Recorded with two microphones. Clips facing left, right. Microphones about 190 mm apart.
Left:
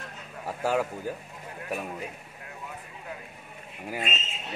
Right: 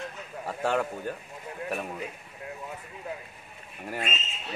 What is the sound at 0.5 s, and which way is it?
Speech, 5° left (ahead or behind).